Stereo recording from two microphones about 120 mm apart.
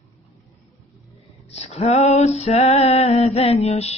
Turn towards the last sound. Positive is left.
turn(degrees=60)  # may be behind; listen again after turning